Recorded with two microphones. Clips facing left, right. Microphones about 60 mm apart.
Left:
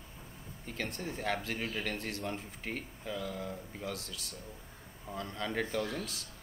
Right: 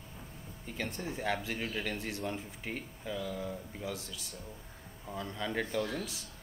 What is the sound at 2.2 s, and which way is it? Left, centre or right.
Speech, centre.